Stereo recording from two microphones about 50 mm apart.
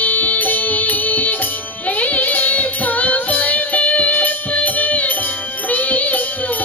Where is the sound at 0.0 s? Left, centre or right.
Left.